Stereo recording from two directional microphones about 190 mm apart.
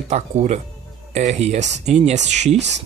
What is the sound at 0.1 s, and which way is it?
Speech, 40° right (ahead or behind).